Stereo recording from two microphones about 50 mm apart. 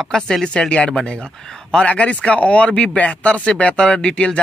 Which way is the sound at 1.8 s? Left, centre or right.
Left.